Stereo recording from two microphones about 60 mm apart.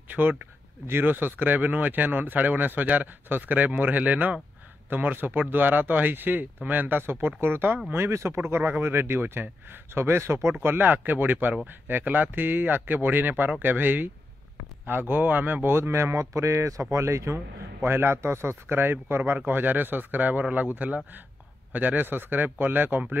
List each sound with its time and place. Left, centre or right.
0.1 s speech: right
8.1 s speech: right
10.6 s speech: right